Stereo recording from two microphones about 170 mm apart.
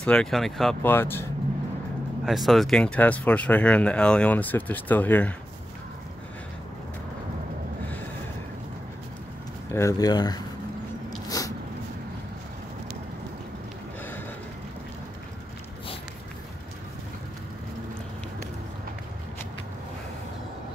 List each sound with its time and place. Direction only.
0.0 s speech: 5° left (ahead or behind)
0.9 s speech: 10° left (ahead or behind)
2.2 s speech: centre (ahead or behind)
9.7 s speech: 15° left (ahead or behind)
11.1 s dog: 20° left (ahead or behind)